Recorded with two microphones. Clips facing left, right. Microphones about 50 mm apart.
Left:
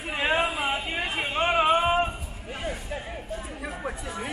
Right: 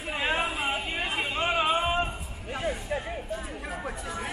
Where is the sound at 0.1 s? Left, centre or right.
Centre.